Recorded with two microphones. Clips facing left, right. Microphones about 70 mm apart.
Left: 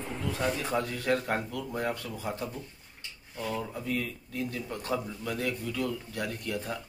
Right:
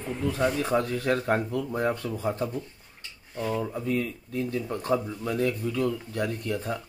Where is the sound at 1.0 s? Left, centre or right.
Right.